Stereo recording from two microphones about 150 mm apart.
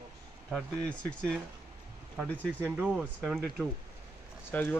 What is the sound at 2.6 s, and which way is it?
Speech, 10° right (ahead or behind).